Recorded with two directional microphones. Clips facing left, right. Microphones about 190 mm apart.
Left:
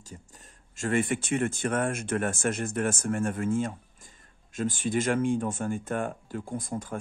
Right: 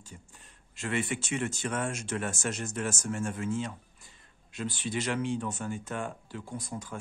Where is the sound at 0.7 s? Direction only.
45° left (ahead or behind).